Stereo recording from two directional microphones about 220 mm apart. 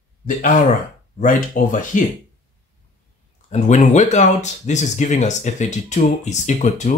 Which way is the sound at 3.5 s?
30° left (ahead or behind).